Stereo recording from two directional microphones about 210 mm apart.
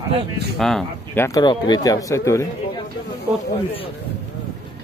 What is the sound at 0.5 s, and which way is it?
Speech, centre (ahead or behind).